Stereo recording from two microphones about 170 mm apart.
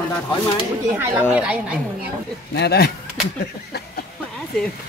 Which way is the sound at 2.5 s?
75° left (ahead or behind).